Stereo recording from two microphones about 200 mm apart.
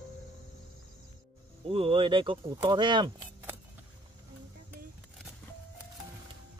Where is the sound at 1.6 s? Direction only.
25° right (ahead or behind).